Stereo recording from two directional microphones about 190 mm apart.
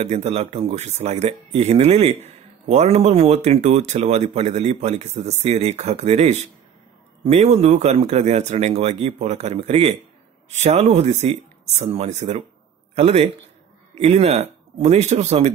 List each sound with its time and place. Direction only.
0.0 s speech: 35° right (ahead or behind)